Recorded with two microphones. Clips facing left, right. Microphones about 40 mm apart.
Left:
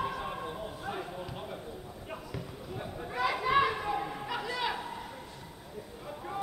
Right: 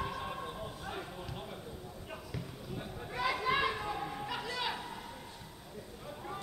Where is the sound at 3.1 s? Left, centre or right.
Centre.